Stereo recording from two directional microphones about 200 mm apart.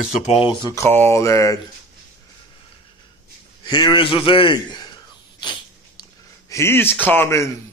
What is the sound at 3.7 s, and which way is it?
A man's voice, 20° left (ahead or behind).